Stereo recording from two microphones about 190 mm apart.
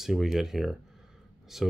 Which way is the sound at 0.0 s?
Centre (ahead or behind).